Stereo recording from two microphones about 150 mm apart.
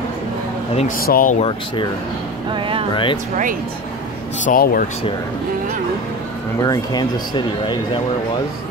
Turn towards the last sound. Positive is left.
turn(degrees=30)  # may be behind; listen again after turning